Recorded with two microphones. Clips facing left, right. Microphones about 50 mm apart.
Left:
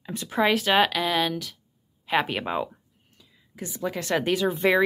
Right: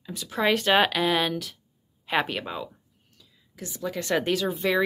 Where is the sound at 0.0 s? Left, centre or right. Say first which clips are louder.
Left 3 dB; left.